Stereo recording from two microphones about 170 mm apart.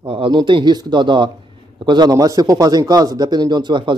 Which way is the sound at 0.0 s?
30° right (ahead or behind).